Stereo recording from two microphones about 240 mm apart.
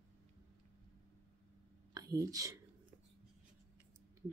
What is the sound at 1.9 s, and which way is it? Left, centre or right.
Speech, centre.